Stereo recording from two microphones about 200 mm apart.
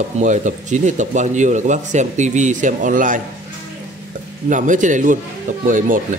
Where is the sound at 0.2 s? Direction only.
40° right (ahead or behind).